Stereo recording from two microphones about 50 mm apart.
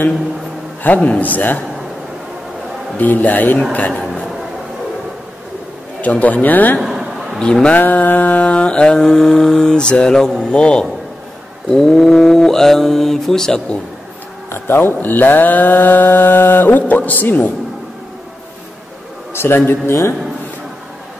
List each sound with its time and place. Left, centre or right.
0.8 s speech: left
3.0 s a man's voice: left
5.9 s speech: left
6.8 s a sound: centre
7.7 s mantra: left; by 10.3 s centre
10.4 s a man's voice: centre
11.7 s mantra: centre
14.5 s speech: left
19.3 s a man's voice: left